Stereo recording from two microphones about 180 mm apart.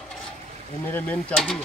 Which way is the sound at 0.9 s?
5° left (ahead or behind).